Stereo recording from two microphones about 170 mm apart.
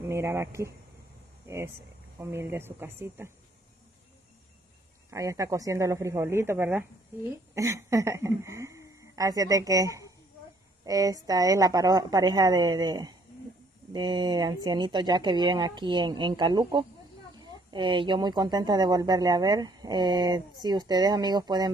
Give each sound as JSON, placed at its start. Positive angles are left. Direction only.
{"t": 0.0, "sound": "speech", "side_deg": -15}
{"t": 2.1, "sound": "speech", "side_deg": -15}
{"t": 5.1, "sound": "a woman's voice", "side_deg": -20}